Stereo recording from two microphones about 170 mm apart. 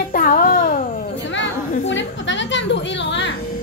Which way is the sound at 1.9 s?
90° left.